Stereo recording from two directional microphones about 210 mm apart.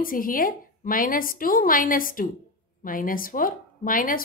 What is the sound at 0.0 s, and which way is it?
A woman's voice, 40° left (ahead or behind).